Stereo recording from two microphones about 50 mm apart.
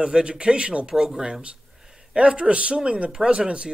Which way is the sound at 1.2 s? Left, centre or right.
Centre.